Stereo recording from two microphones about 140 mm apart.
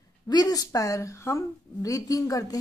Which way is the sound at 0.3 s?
25° left (ahead or behind).